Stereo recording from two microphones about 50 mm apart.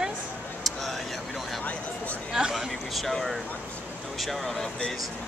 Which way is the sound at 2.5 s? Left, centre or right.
Centre.